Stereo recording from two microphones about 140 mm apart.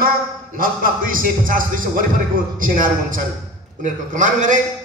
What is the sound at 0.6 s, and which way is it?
A man's voice, 80° right.